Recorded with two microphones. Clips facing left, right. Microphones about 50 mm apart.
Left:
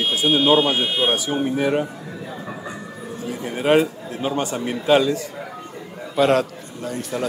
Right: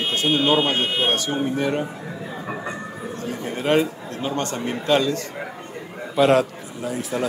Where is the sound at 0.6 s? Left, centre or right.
Right.